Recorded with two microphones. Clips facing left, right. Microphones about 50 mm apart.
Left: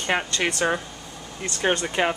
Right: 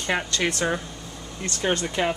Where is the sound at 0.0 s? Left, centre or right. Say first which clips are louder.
Left 1 dB; centre.